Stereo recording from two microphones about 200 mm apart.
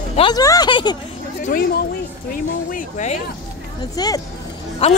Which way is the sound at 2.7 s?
35° left (ahead or behind).